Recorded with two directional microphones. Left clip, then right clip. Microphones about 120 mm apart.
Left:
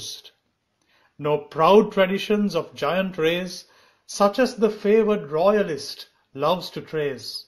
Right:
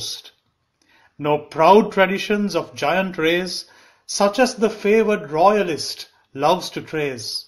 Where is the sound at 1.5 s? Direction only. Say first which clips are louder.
Right 3 dB; 25° left (ahead or behind).